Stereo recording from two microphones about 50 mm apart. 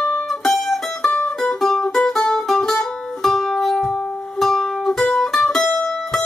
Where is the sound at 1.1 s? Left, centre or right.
Left.